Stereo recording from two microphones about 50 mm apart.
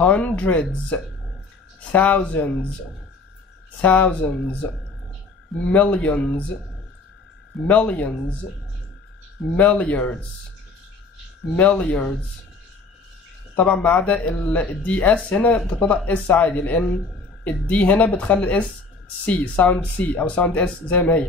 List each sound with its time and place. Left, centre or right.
0.0 s speech: left
3.8 s speech: left
7.6 s speech: left
9.6 s speech: left
11.5 s speech: left
13.8 s speech: left